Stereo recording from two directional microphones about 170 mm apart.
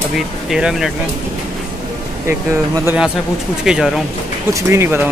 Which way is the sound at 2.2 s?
15° right (ahead or behind).